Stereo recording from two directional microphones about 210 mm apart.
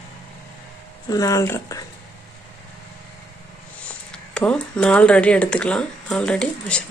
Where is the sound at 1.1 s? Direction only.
15° left (ahead or behind).